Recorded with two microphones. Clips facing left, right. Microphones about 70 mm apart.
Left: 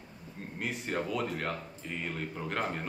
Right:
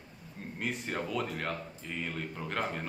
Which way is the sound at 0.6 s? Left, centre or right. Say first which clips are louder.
Left 1 dB; centre.